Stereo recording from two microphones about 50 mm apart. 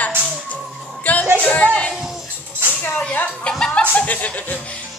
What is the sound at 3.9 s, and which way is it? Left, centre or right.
Snicker, left.